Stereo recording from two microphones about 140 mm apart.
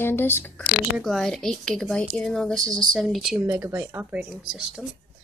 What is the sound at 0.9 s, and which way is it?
Speech, centre (ahead or behind).